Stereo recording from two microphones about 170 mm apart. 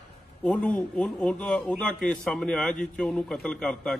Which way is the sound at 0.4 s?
5° left (ahead or behind).